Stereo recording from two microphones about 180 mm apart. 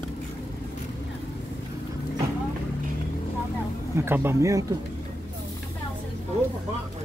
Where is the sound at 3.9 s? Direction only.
15° right (ahead or behind).